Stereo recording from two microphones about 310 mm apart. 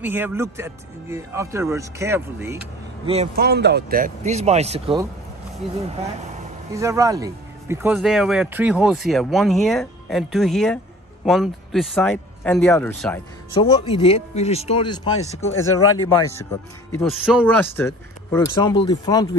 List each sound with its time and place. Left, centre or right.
0.0 s speech: centre
3.1 s speech: right
6.7 s speech: centre
15.5 s speech: left
16.9 s speech: centre